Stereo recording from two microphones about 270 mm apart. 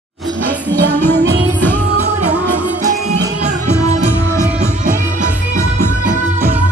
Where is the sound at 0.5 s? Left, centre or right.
Centre.